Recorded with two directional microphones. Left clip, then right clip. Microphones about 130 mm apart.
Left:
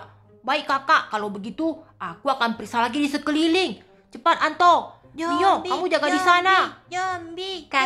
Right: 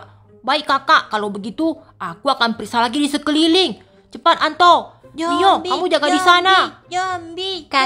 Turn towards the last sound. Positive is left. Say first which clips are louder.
# right 5 dB
turn(degrees=-30)  # may be behind; listen again after turning